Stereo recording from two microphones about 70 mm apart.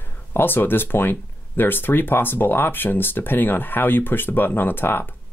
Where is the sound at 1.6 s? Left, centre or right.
Left.